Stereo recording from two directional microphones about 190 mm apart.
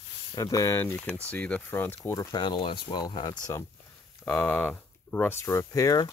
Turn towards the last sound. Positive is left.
turn(degrees=20)  # may be behind; listen again after turning